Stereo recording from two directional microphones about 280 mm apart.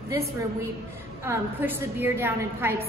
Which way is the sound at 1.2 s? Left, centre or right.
Centre.